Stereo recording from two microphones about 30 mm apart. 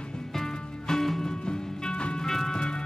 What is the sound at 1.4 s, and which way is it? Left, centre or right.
Music, left.